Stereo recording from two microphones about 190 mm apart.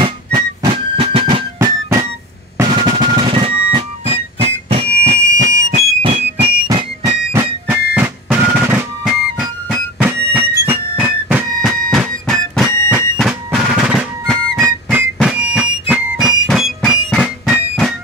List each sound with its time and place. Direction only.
0.0 s music: 25° right (ahead or behind)
2.5 s drum: 25° right (ahead or behind)
5.7 s music: 35° right (ahead or behind)
7.3 s music: 10° right (ahead or behind)
13.2 s drum: centre (ahead or behind)
15.0 s music: 5° right (ahead or behind)